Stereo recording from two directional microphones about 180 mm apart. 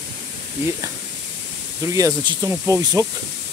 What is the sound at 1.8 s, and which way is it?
Speech, 20° right (ahead or behind).